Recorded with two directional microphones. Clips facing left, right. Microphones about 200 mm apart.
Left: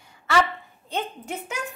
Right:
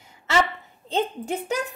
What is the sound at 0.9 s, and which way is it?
Speech, 30° right (ahead or behind).